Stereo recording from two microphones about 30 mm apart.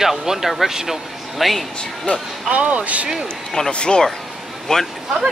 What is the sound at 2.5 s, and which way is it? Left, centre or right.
Speech, right.